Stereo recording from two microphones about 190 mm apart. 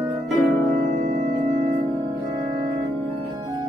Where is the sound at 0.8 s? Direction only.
40° right (ahead or behind).